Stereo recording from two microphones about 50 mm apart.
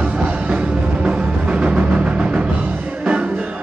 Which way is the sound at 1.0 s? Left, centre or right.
Right.